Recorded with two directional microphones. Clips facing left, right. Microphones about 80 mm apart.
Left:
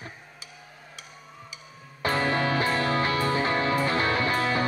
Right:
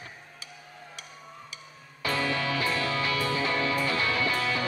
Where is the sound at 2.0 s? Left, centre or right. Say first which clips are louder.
Left 4 dB; left.